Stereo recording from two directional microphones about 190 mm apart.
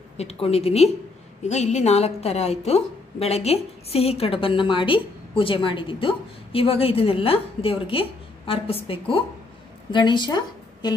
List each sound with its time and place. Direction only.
0.2 s a woman's voice: 35° left (ahead or behind)